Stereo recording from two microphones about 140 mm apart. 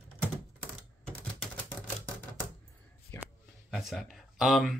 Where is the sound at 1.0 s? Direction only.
5° left (ahead or behind).